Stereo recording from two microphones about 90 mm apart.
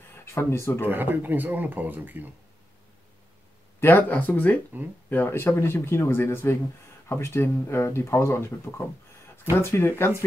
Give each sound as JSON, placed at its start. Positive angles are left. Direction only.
{"t": 0.1, "sound": "speech", "side_deg": 25}
{"t": 0.8, "sound": "speech", "side_deg": -20}
{"t": 3.8, "sound": "speech", "side_deg": 20}